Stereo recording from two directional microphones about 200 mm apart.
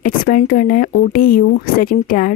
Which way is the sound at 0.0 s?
45° left (ahead or behind).